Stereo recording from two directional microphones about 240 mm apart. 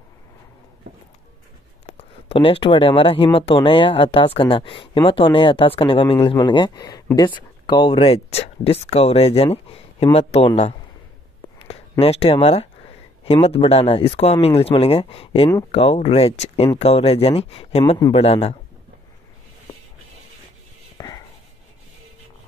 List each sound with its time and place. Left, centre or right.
1.9 s speech: left
11.5 s a sound: left
12.0 s speech: left
21.0 s whispering: centre